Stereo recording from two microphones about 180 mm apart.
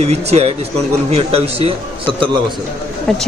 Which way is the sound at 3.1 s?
5° left (ahead or behind).